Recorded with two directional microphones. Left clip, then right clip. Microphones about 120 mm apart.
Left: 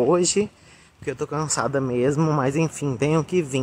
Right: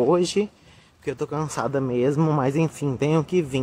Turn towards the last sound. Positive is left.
turn(degrees=-20)  # may be behind; listen again after turning